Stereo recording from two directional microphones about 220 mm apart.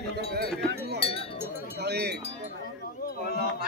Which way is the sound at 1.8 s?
50° right (ahead or behind).